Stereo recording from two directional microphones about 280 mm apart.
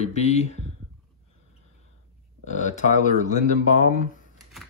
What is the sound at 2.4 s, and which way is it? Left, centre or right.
Speech, left.